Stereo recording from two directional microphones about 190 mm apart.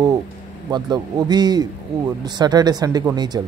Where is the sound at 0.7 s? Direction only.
20° right (ahead or behind).